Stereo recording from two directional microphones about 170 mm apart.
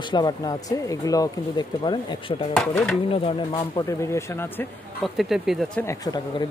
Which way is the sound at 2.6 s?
5° left (ahead or behind).